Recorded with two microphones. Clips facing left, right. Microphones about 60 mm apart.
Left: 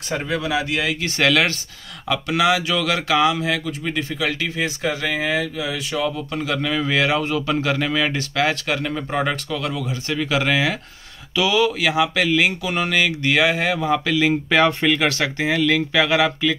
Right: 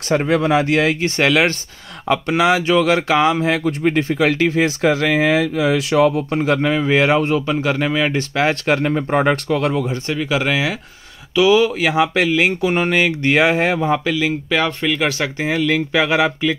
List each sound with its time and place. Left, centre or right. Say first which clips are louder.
0.3 s speech: right 6 dB; right
1.0 s a man's voice: right 3 dB; right
4.8 s speech: right 7 dB; right
6.0 s speech: right 7 dB; right
6.4 s a man's voice: right 4 dB; right; by 8.1 s centre
8.1 s speech: right 3 dB; right
10.1 s speech: even; centre
11.3 s a man's voice: right 5 dB; right
14.1 s speech: left 1 dB; centre
15.0 s speech: right 1 dB; centre